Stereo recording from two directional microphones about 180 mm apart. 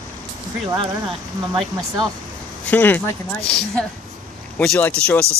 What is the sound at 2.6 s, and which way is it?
Speech, 10° left (ahead or behind).